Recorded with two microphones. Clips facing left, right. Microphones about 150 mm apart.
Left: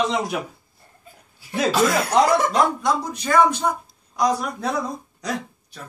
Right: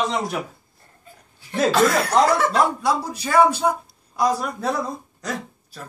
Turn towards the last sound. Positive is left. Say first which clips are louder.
# left 1 dB
turn(degrees=-5)  # may be behind; listen again after turning